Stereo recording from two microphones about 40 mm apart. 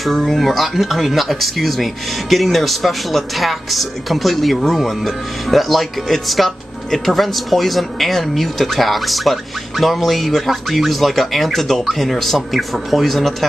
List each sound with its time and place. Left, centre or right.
0.0 s speech: centre